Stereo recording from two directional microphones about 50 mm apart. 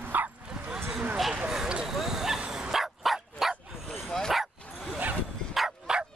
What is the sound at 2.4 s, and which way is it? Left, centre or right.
Dog, centre.